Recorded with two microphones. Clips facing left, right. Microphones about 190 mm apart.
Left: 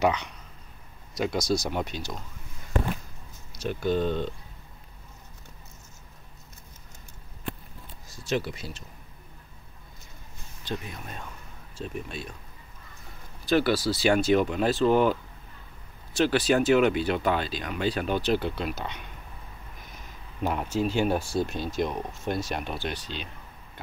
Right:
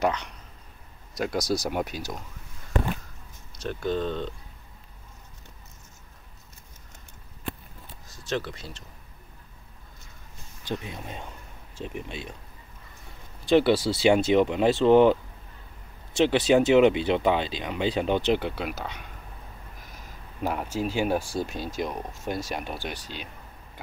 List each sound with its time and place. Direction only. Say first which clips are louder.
0.0 s speech: left 1 dB; 5° left (ahead or behind)
3.5 s speech: left 2 dB; 5° left (ahead or behind)
8.3 s speech: left 2 dB; 10° left (ahead or behind)
10.7 s speech: right 2 dB; 20° right (ahead or behind)
13.5 s speech: right 3 dB; 25° right (ahead or behind)
16.2 s speech: right 3 dB; 20° right (ahead or behind); by 19.0 s 5° right (ahead or behind)
20.4 s speech: left 1 dB; 10° right (ahead or behind)